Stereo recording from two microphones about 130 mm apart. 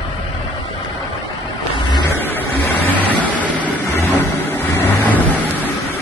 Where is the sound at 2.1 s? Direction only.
20° left (ahead or behind).